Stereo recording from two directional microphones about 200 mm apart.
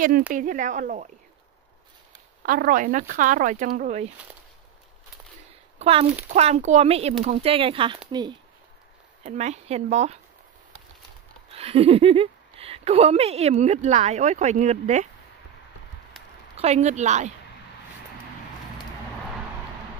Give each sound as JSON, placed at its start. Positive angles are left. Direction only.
{"t": 0.3, "sound": "speech", "side_deg": -40}
{"t": 2.4, "sound": "speech", "side_deg": -45}
{"t": 5.8, "sound": "speech", "side_deg": -30}
{"t": 9.2, "sound": "speech", "side_deg": -35}
{"t": 11.5, "sound": "speech", "side_deg": -30}
{"t": 16.1, "sound": "a sound", "side_deg": 0}
{"t": 16.5, "sound": "speech", "side_deg": -35}